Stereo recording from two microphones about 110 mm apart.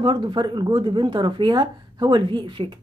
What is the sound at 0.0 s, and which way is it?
A woman's voice, 45° right (ahead or behind).